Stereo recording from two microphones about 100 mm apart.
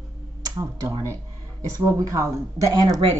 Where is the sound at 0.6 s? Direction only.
25° right (ahead or behind).